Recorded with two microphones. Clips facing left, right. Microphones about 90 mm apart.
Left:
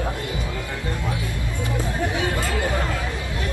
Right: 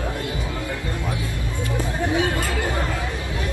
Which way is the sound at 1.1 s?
20° left (ahead or behind).